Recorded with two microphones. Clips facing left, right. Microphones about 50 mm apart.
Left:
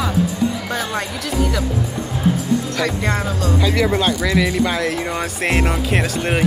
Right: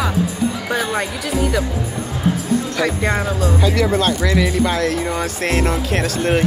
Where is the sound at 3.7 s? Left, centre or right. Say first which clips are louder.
Even; centre.